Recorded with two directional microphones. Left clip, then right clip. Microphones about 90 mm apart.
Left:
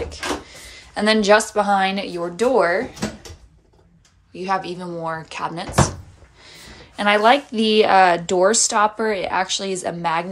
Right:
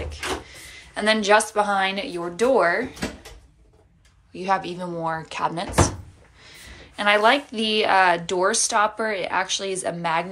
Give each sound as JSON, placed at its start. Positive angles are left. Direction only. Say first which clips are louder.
{"t": 0.0, "sound": "speech", "louder": "left 3 dB", "side_deg": 55}
{"t": 4.3, "sound": "a woman's voice", "louder": "left 1 dB", "side_deg": 20}
{"t": 6.4, "sound": "a woman's voice", "louder": "left 2 dB", "side_deg": 45}